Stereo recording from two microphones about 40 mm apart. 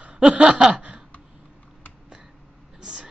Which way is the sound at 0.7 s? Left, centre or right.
Right.